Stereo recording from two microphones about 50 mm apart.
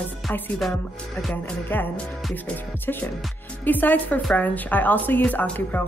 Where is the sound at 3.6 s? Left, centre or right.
Left.